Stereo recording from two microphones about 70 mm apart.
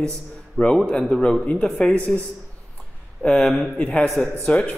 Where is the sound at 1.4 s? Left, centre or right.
Centre.